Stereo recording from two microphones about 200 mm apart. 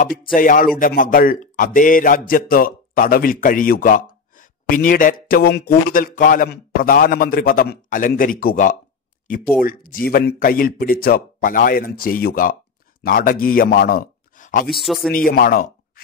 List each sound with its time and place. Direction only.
0.3 s speech: 40° left (ahead or behind)
14.7 s speech: centre (ahead or behind)
15.1 s speech: 45° left (ahead or behind)